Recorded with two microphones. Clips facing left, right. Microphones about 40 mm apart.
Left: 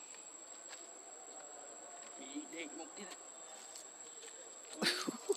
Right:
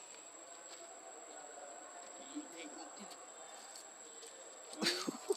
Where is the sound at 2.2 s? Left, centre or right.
Left.